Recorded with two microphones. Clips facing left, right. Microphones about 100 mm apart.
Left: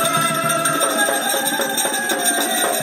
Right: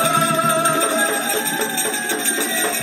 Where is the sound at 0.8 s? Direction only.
20° left (ahead or behind).